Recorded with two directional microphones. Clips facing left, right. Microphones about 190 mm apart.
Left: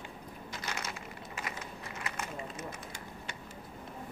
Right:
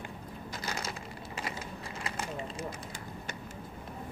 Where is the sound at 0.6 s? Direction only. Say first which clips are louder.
Right 2 dB; 35° right (ahead or behind).